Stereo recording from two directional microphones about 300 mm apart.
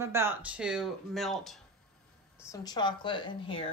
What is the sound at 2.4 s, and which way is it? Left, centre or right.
Speech, centre.